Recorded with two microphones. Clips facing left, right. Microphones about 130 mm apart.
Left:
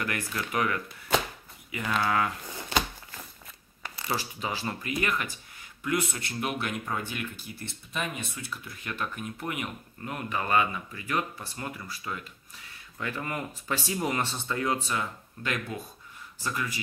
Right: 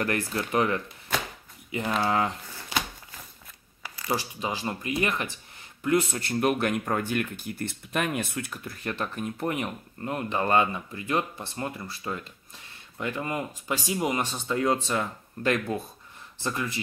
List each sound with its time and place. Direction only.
0.0 s speech: 35° right (ahead or behind)
4.1 s speech: 15° right (ahead or behind); by 8.5 s 55° right (ahead or behind)
8.6 s speech: 35° right (ahead or behind); by 14.6 s 15° right (ahead or behind)
14.6 s speech: 30° right (ahead or behind)
16.3 s speech: 25° right (ahead or behind)